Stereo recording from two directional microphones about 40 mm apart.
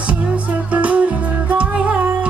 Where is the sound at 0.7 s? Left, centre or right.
Right.